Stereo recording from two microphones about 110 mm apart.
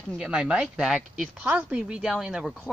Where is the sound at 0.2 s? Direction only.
10° right (ahead or behind).